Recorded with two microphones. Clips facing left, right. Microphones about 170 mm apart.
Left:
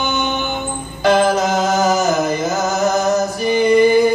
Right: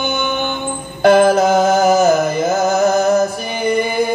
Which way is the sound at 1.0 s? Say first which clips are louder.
Right 4 dB; 55° right (ahead or behind).